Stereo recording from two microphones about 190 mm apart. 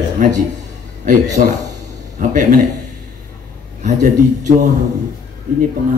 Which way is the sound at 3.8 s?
40° right (ahead or behind).